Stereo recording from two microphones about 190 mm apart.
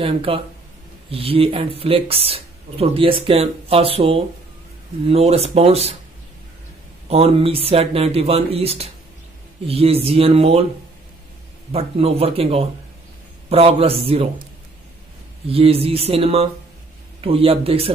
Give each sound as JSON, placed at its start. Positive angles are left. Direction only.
{"t": 0.0, "sound": "speech", "side_deg": -30}
{"t": 7.1, "sound": "speech", "side_deg": -30}
{"t": 11.7, "sound": "speech", "side_deg": -30}
{"t": 15.4, "sound": "speech", "side_deg": -30}